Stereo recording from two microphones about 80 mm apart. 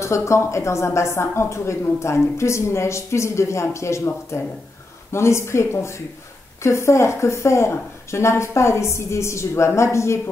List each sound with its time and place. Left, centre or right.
0.0 s a woman's voice: left